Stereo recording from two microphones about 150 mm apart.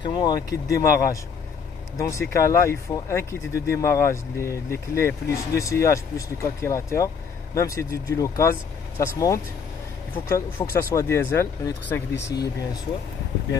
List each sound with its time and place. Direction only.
0.0 s speech: 30° left (ahead or behind)